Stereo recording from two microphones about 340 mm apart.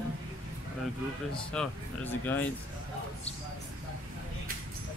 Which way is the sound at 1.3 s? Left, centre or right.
Centre.